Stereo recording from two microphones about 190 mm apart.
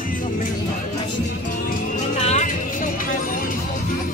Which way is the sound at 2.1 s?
35° left (ahead or behind).